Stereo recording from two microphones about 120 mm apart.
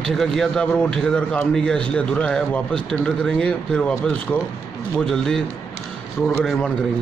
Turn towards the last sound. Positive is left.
turn(degrees=0)  # may be behind; listen again after turning